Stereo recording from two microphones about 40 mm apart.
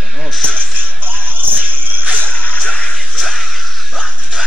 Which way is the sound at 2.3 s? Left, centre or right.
Left.